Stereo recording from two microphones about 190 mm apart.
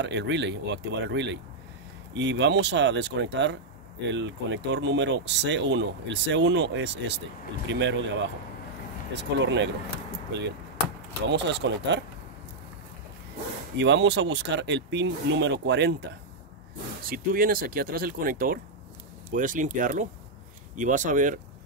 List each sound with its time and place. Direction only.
0.0 s speech: 65° right (ahead or behind)
9.1 s speech: 70° right (ahead or behind)
13.7 s speech: 70° right (ahead or behind)
17.0 s speech: 50° right (ahead or behind)